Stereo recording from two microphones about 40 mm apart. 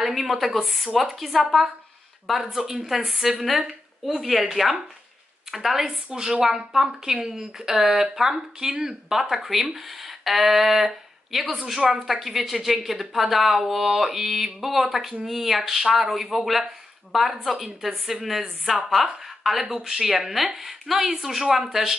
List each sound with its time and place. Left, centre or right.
0.0 s speech: centre
5.5 s speech: centre
6.0 s a woman's voice: centre
10.0 s a sound: centre
10.8 s speech: centre
11.7 s speech: centre